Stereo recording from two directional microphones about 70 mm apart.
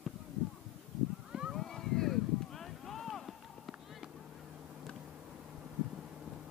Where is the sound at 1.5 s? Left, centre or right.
Centre.